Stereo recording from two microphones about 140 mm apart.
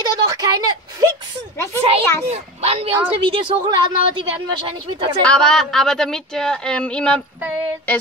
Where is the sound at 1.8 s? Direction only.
45° right (ahead or behind).